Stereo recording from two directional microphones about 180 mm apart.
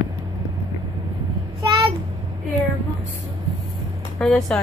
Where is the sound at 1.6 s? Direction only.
25° right (ahead or behind).